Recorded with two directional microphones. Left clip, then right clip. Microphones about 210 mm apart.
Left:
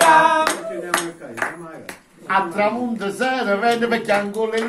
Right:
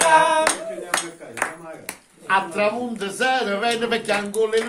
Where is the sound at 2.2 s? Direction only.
5° left (ahead or behind).